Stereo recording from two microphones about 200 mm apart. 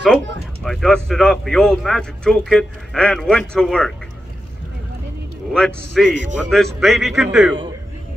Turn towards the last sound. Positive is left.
turn(degrees=0)  # may be behind; listen again after turning